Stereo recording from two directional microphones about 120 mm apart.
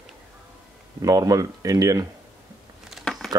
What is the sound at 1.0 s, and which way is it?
Speech, 30° right (ahead or behind).